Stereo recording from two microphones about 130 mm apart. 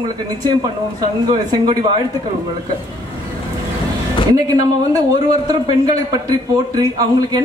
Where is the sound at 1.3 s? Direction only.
30° right (ahead or behind).